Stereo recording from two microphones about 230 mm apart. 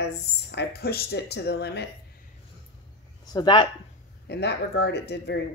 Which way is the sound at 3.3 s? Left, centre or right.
Left.